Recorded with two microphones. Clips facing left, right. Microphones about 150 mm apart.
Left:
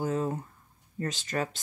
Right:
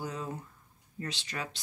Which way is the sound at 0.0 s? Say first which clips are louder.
Left 8 dB; 50° left (ahead or behind).